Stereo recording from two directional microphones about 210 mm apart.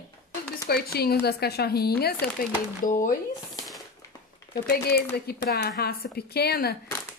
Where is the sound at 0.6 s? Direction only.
50° left (ahead or behind).